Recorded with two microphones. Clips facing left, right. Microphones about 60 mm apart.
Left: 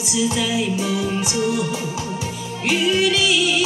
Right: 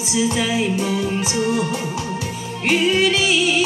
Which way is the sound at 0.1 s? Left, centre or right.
Right.